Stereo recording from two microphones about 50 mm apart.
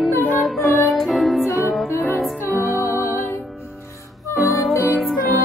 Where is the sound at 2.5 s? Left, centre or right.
Left.